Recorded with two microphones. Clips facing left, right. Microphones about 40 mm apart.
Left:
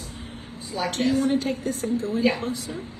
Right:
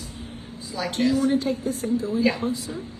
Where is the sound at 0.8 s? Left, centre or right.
Left.